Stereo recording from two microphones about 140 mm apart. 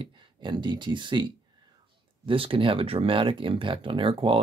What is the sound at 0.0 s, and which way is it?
Speech, 35° right (ahead or behind).